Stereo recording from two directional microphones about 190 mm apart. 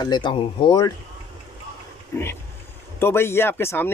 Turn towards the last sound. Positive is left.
turn(degrees=15)  # may be behind; listen again after turning